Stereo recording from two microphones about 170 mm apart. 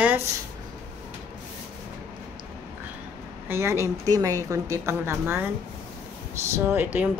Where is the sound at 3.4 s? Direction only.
15° right (ahead or behind).